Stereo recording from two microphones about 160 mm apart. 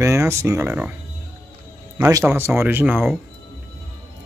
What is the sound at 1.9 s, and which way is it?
Speech, 20° right (ahead or behind).